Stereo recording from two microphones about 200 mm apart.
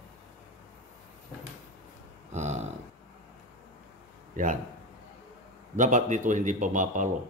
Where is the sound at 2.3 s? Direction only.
35° right (ahead or behind).